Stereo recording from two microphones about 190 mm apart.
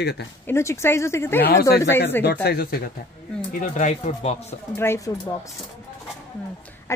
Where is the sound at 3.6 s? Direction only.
40° left (ahead or behind).